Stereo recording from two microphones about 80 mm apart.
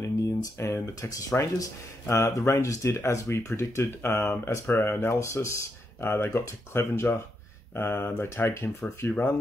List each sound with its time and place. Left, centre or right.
0.0 s a sound: left
1.1 s speech: left
8.8 s speech: centre